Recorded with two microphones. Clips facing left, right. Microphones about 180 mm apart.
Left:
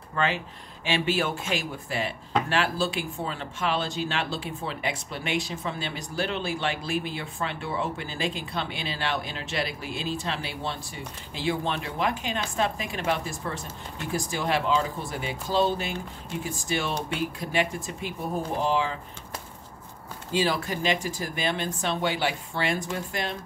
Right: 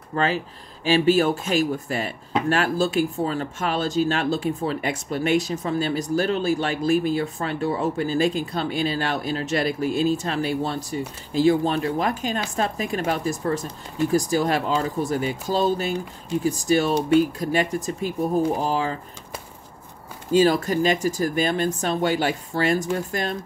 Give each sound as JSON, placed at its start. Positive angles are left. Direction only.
{"t": 0.1, "sound": "speech", "side_deg": -35}
{"t": 20.3, "sound": "speech", "side_deg": -45}